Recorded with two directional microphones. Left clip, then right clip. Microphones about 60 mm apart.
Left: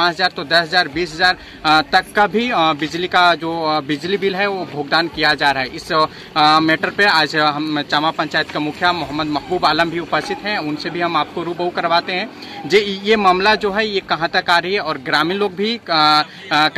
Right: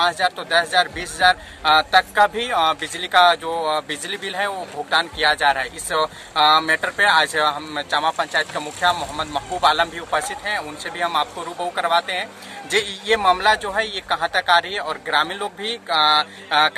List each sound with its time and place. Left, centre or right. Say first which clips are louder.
0.0 s a man's voice: left 3 dB; right; by 5.7 s centre
5.9 s a man's voice: left 6 dB; right
7.9 s speech: left 1 dB; right
9.1 s speech: left 5 dB; centre
13.1 s a man's voice: left 3 dB; right
13.6 s speech: left 4 dB; right
14.0 s a man's voice: left 2 dB; right
15.9 s speech: left 3 dB; centre